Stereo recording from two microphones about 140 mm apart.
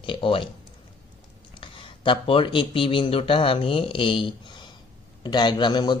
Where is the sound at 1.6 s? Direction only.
40° left (ahead or behind).